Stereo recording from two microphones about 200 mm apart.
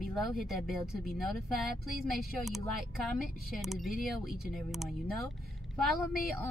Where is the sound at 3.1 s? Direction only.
Centre (ahead or behind).